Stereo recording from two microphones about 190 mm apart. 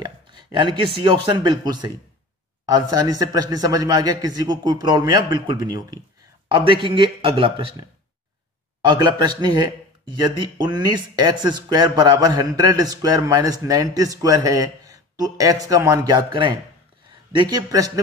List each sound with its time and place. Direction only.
0.0 s speech: 25° right (ahead or behind)
8.8 s speech: 20° right (ahead or behind)